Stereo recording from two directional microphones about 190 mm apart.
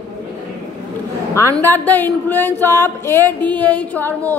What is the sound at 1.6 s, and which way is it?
A woman's voice, 10° left (ahead or behind).